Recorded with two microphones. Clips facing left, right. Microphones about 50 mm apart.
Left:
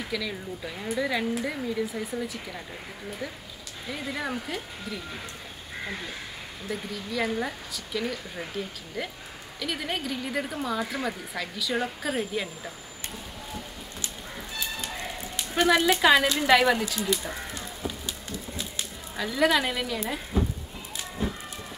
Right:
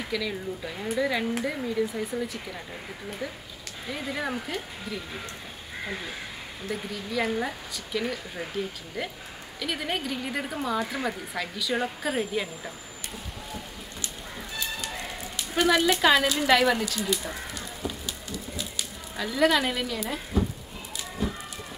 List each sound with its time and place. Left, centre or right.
0.1 s speech: centre
15.5 s speech: centre
19.1 s speech: centre
20.3 s a sound: left
21.2 s chicken: left